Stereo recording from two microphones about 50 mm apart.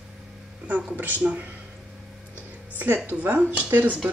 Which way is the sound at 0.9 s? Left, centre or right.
Right.